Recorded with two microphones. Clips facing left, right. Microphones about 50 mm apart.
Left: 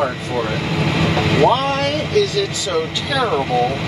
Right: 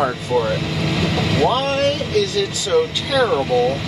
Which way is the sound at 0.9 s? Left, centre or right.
Left.